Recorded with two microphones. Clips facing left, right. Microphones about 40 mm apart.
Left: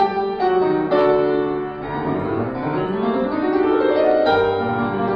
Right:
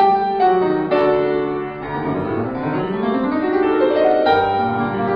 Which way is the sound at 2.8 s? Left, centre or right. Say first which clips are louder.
Even; centre.